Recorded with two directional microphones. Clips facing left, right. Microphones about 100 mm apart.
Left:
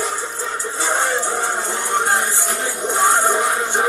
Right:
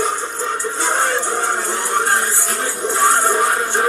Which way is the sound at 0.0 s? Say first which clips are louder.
Right 3 dB; centre (ahead or behind).